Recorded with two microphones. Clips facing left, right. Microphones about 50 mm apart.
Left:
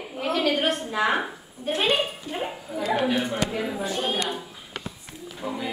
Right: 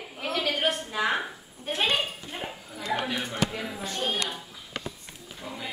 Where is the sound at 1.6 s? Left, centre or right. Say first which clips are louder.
Left 4 dB; centre.